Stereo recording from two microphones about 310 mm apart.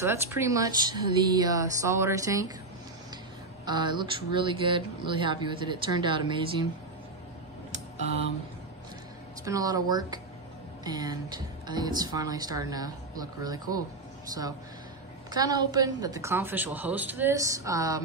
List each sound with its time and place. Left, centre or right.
0.0 s speech: centre
3.6 s speech: centre
9.4 s speech: centre
15.3 s speech: centre